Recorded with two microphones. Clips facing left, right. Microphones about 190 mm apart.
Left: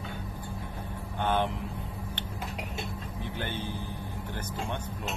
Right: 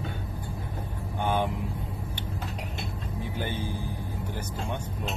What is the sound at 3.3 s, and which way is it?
Speech, 10° right (ahead or behind).